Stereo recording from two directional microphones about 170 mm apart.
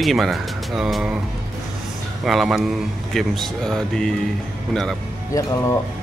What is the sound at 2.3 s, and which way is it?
A man's voice, centre (ahead or behind).